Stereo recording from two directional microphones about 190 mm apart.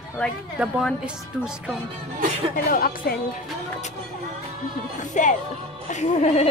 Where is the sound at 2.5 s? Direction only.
50° left (ahead or behind).